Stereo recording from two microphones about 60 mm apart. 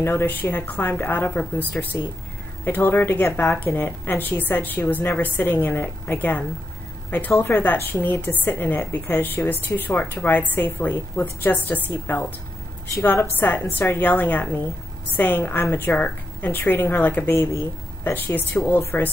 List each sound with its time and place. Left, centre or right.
0.0 s speech: left
17.4 s speech: left
18.0 s speech: left